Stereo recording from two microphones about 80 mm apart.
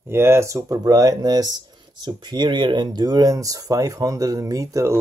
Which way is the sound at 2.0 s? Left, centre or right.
Right.